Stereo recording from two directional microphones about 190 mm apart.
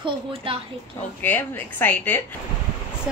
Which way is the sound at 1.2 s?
10° left (ahead or behind).